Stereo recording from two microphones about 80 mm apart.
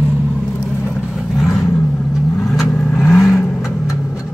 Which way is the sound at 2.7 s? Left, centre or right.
Centre.